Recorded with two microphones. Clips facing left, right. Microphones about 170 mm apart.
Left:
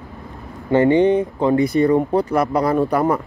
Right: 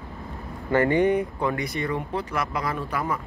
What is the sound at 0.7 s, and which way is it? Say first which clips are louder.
Speech: left 6 dB; 20° left (ahead or behind).